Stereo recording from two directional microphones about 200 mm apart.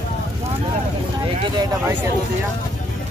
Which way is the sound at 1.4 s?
20° right (ahead or behind).